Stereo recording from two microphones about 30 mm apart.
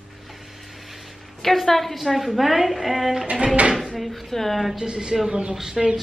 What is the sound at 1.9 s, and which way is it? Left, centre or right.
Speech, centre.